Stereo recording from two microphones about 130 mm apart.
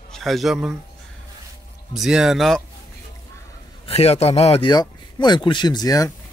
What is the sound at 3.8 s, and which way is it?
Speech, 50° left (ahead or behind).